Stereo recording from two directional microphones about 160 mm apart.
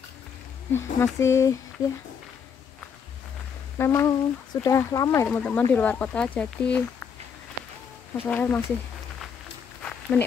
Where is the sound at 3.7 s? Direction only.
15° left (ahead or behind).